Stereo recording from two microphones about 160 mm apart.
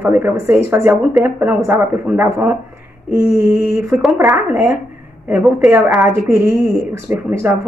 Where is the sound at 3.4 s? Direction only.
15° right (ahead or behind).